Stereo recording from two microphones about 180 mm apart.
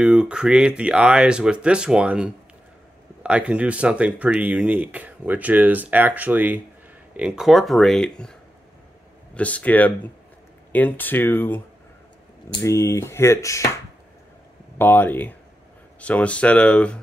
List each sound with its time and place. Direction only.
0.0 s speech: 5° right (ahead or behind); by 11.6 s 10° left (ahead or behind)
12.6 s speech: 15° left (ahead or behind)
14.8 s speech: 10° left (ahead or behind)